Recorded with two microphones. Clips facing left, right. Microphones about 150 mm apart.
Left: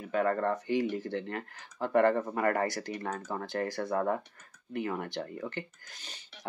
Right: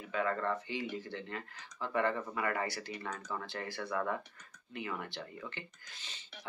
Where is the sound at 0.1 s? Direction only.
50° left (ahead or behind).